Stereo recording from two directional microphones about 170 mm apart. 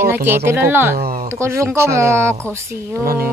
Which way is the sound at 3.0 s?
60° right (ahead or behind).